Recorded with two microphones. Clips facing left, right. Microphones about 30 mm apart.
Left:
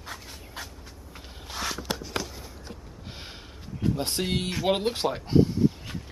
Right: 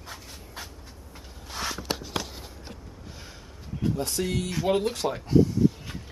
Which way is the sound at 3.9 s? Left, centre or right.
Left.